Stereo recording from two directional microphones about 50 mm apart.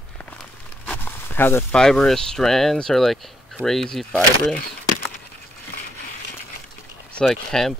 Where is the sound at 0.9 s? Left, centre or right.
Left.